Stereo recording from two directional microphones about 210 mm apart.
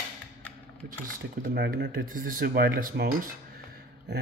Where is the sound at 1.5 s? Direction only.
50° right (ahead or behind).